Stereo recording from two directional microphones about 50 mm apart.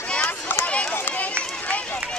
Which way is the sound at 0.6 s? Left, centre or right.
Left.